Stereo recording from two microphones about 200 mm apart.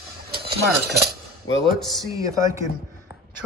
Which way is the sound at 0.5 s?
50° right (ahead or behind).